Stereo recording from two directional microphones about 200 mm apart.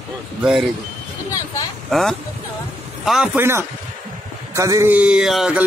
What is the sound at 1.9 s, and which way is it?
A man's voice, centre (ahead or behind).